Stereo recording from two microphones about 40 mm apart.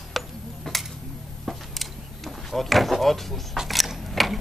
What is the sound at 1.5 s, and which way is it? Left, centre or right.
Door, centre.